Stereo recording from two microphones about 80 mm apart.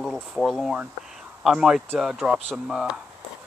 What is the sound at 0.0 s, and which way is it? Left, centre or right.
Boiling, centre.